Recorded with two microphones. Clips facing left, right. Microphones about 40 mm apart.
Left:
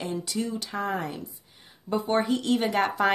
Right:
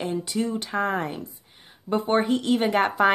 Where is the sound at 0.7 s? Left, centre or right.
Right.